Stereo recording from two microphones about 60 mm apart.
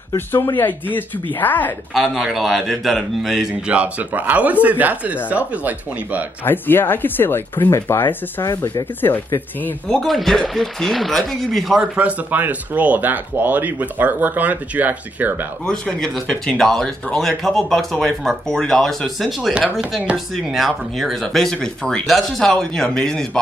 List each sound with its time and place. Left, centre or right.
0.3 s speech: left
2.0 s speech: centre
3.6 s speech: right
6.4 s speech: left
10.0 s speech: centre
12.0 s speech: right
15.6 s speech: centre
20.1 s speech: centre
20.5 s speech: centre